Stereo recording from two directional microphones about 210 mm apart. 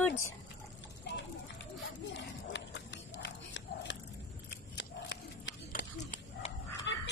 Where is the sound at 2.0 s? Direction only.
60° left (ahead or behind).